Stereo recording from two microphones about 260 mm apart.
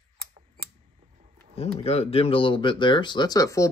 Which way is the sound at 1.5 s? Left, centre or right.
Left.